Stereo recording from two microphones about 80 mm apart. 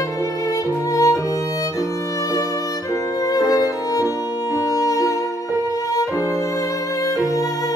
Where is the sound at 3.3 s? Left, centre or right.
Left.